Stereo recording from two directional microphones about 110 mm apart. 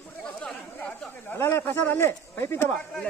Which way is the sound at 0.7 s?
15° left (ahead or behind).